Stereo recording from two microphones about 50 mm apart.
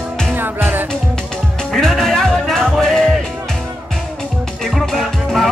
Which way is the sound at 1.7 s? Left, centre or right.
Centre.